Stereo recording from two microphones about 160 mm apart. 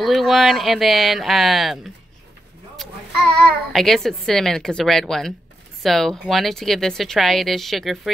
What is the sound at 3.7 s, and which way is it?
Speech, centre (ahead or behind).